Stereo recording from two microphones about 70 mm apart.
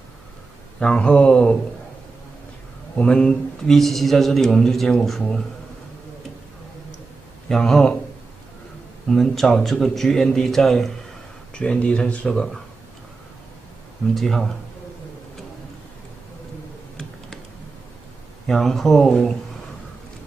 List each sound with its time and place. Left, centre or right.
0.7 s speech: centre
3.0 s speech: centre
7.4 s speech: centre
9.1 s speech: centre
11.5 s speech: centre
14.1 s speech: centre
18.5 s speech: centre